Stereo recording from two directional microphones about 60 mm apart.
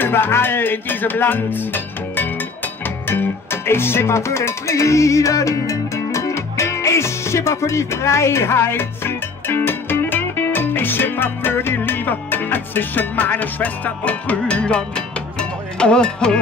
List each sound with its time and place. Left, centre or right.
0.0 s music: left; by 16.3 s centre